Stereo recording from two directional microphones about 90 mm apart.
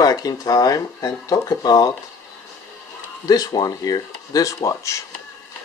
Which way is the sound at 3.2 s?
45° left (ahead or behind).